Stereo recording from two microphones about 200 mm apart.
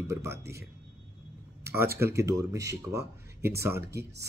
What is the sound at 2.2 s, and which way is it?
Speech, 15° right (ahead or behind).